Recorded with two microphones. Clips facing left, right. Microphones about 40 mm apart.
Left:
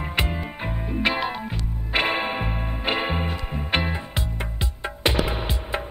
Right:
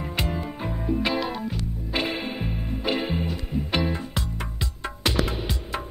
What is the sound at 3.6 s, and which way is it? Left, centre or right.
Music, left.